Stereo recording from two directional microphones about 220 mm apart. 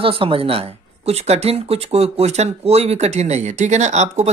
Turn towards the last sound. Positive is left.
turn(degrees=-30)  # may be behind; listen again after turning